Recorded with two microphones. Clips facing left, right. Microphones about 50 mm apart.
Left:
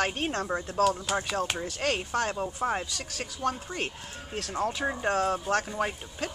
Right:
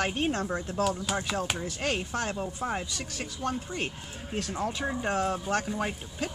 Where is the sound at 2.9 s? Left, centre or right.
Centre.